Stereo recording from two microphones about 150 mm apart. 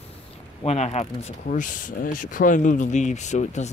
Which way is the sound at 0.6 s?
45° left (ahead or behind).